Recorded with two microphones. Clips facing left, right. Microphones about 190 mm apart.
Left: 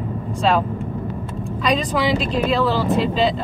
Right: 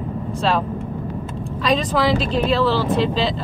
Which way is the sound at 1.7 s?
Centre (ahead or behind).